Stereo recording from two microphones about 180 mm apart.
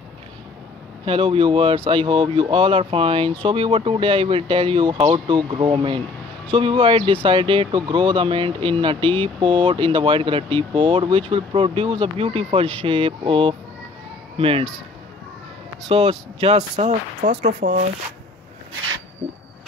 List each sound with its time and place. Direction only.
1.0 s speech: 30° right (ahead or behind)
15.9 s speech: 35° right (ahead or behind)